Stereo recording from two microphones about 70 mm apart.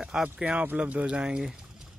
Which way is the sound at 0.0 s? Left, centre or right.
Centre.